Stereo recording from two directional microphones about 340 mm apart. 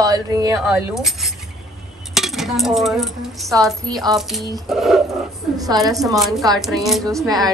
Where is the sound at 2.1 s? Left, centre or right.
Centre.